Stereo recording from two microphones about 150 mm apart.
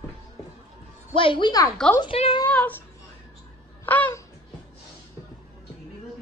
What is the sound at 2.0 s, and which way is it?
Speech, 40° left (ahead or behind).